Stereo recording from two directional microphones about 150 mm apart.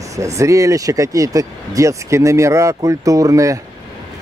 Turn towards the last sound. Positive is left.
turn(degrees=-20)  # may be behind; listen again after turning